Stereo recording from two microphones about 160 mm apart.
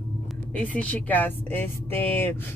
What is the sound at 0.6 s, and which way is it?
Speech, 10° left (ahead or behind).